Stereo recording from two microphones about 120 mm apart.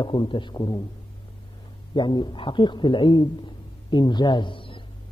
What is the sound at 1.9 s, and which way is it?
A man's voice, 40° left (ahead or behind).